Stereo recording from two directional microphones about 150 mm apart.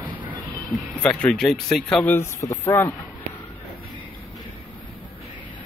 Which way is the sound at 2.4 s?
15° left (ahead or behind).